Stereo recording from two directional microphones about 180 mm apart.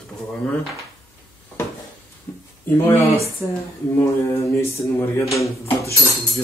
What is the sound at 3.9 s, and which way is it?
Speech, 15° left (ahead or behind).